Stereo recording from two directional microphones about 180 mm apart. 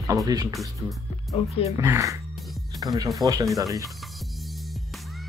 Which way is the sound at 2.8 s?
20° right (ahead or behind).